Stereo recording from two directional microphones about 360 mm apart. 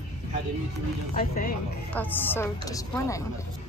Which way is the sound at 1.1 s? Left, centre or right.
Left.